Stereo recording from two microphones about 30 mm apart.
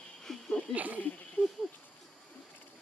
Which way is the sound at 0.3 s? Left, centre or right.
Centre.